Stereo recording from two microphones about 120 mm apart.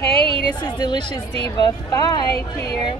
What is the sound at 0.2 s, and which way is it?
Music, 45° right (ahead or behind).